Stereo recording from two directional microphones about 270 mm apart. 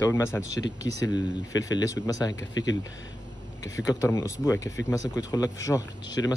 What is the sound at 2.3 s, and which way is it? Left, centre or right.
Speech, left.